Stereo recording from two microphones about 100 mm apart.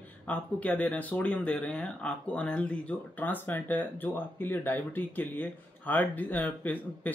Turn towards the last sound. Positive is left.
turn(degrees=15)  # may be behind; listen again after turning